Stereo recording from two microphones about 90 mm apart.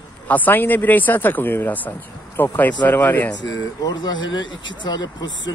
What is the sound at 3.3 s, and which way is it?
Speech, 50° left (ahead or behind).